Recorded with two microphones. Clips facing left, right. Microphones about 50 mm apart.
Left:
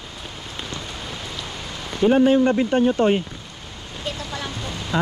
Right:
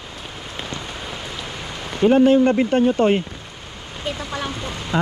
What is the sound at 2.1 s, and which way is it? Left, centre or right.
Speech, right.